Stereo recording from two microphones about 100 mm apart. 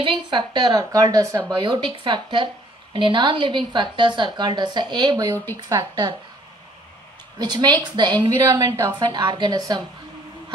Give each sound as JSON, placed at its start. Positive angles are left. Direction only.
{"t": 0.0, "sound": "a woman's voice", "side_deg": -55}
{"t": 1.6, "sound": "a woman's voice", "side_deg": -50}
{"t": 7.3, "sound": "a woman's voice", "side_deg": -45}
{"t": 8.5, "sound": "speech", "side_deg": -35}
{"t": 9.0, "sound": "a woman's voice", "side_deg": -45}